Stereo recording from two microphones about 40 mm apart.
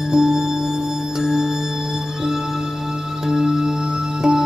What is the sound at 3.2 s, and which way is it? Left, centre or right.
Music, centre.